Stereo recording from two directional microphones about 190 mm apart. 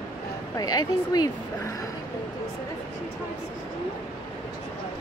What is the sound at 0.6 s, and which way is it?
A woman's voice, 20° left (ahead or behind).